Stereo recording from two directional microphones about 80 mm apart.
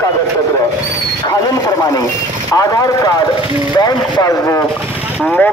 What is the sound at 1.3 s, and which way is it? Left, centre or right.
Speech, left.